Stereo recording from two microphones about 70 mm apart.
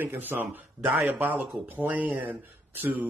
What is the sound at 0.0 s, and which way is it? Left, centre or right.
Speech, right.